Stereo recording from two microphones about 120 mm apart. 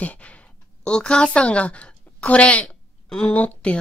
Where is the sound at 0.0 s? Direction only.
10° left (ahead or behind).